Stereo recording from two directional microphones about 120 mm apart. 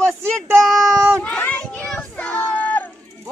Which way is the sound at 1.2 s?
10° left (ahead or behind).